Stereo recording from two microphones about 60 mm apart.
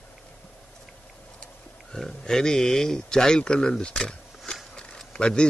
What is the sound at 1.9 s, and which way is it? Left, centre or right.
A man's voice, centre.